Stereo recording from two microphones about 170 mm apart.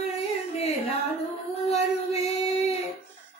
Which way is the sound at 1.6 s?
40° left (ahead or behind).